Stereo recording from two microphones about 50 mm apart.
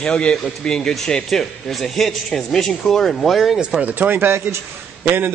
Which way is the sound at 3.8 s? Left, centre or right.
Right.